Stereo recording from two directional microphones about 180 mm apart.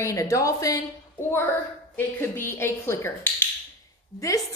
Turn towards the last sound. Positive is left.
turn(degrees=20)  # may be behind; listen again after turning